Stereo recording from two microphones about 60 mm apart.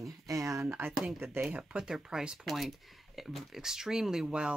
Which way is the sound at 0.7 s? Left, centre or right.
Right.